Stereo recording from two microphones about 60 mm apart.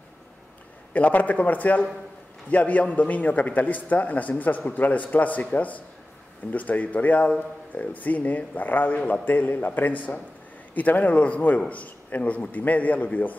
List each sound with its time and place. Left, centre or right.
0.9 s speech: left